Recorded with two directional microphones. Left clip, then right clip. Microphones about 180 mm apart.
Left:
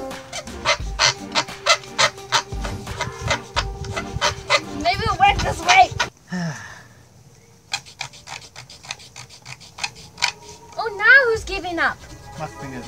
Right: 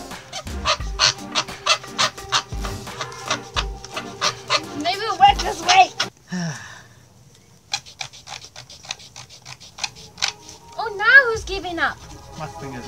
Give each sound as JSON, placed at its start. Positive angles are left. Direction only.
{"t": 0.3, "sound": "music", "side_deg": 20}
{"t": 1.6, "sound": "fowl", "side_deg": 20}
{"t": 3.0, "sound": "music", "side_deg": 20}
{"t": 6.3, "sound": "sniff", "side_deg": 0}
{"t": 7.7, "sound": "rub", "side_deg": 20}
{"t": 10.8, "sound": "a sound", "side_deg": 25}